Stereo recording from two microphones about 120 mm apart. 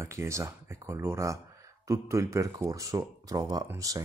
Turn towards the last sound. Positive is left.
turn(degrees=-30)  # may be behind; listen again after turning